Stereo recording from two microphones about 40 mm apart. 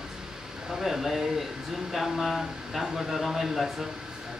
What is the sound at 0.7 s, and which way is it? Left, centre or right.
Speech, centre.